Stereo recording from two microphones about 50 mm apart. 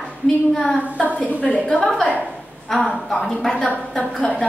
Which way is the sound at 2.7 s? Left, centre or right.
Centre.